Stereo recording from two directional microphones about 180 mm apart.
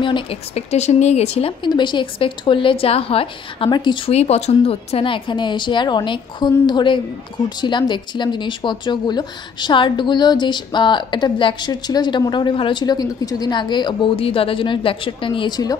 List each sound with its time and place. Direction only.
0.0 s speech: 30° left (ahead or behind)